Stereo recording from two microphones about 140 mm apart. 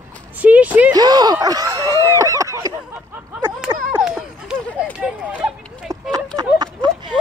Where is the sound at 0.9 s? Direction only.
30° right (ahead or behind).